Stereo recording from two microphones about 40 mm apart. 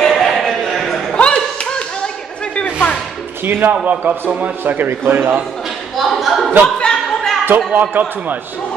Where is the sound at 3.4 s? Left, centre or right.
Right.